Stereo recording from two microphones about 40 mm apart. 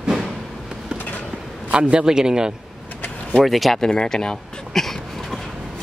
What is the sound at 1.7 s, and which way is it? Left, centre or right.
Speech, right.